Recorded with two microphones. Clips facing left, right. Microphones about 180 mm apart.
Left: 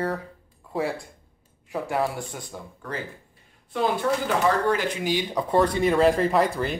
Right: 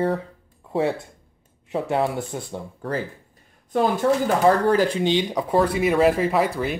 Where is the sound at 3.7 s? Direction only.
45° right (ahead or behind); by 5.2 s 25° right (ahead or behind).